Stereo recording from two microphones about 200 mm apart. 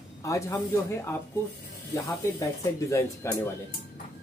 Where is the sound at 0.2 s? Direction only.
15° left (ahead or behind).